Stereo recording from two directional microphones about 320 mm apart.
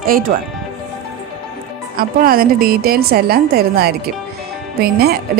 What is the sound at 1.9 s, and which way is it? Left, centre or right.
A woman's voice, right.